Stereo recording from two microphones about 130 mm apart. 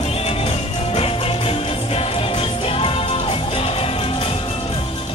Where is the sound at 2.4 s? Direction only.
45° left (ahead or behind).